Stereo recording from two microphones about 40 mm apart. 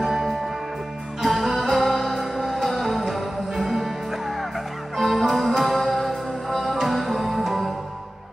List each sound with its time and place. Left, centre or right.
0.0 s music: centre
4.9 s music: centre